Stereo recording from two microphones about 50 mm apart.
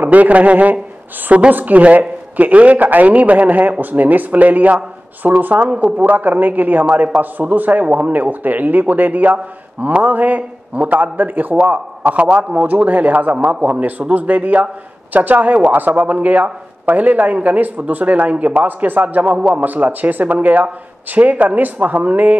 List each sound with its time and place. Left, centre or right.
0.0 s speech: right
19.3 s a man's voice: right
19.6 s speech: right